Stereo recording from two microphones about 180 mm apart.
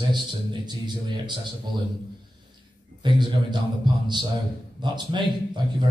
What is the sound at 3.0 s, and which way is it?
A man's voice, 25° right (ahead or behind).